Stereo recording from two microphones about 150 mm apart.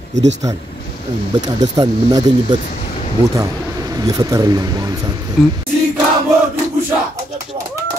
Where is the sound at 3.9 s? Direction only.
25° right (ahead or behind).